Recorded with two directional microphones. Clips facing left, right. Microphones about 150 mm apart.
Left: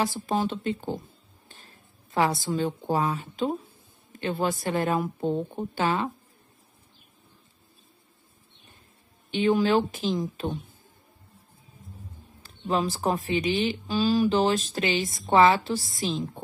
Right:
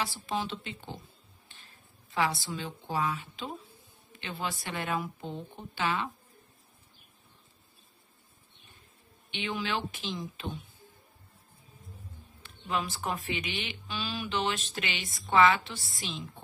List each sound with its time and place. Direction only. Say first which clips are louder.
0.0 s a woman's voice: left 7 dB; 45° left (ahead or behind)
9.3 s a woman's voice: left 12 dB; 40° left (ahead or behind)
12.4 s speech: left 7 dB; 35° left (ahead or behind)